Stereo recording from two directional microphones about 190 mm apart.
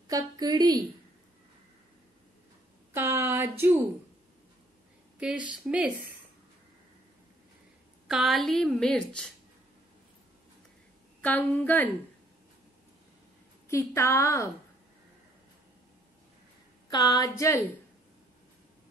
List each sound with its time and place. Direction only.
0.1 s a woman's voice: 20° right (ahead or behind)
2.9 s a sound: 15° right (ahead or behind)
5.2 s a woman's voice: 5° right (ahead or behind)
8.1 s a woman's voice: centre (ahead or behind)
11.1 s a woman's voice: 10° left (ahead or behind)
13.7 s a woman's voice: 15° left (ahead or behind)
16.9 s speech: 20° left (ahead or behind)